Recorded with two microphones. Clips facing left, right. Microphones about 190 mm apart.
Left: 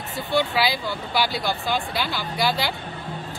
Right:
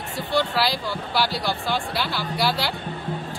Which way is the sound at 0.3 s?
Centre (ahead or behind).